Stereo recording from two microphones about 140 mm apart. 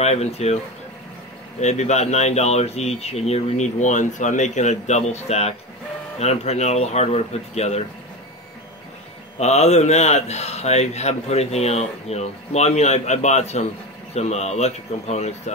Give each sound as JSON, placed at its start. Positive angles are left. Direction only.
{"t": 0.0, "sound": "a man's voice", "side_deg": 50}
{"t": 1.6, "sound": "a man's voice", "side_deg": 55}
{"t": 9.4, "sound": "a man's voice", "side_deg": 50}